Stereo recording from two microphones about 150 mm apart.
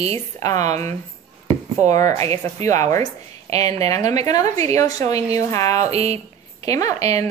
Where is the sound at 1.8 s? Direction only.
50° right (ahead or behind).